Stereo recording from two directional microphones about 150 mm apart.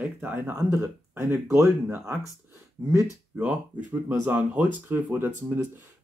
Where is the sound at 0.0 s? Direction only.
10° right (ahead or behind).